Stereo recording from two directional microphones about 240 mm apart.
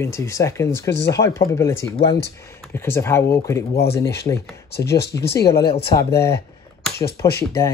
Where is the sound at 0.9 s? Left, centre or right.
Left.